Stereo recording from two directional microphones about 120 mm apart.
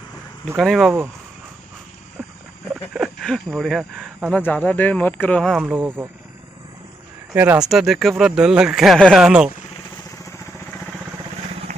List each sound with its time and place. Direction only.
0.6 s speech: centre (ahead or behind)
2.7 s a sound: 5° right (ahead or behind)
3.3 s speech: centre (ahead or behind)
4.5 s speech: 10° left (ahead or behind)
5.6 s speech: 15° right (ahead or behind)
7.3 s speech: 15° right (ahead or behind)
7.6 s speech: centre (ahead or behind)